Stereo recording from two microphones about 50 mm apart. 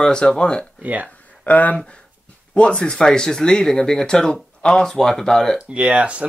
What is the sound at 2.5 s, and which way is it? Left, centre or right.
Speech, left.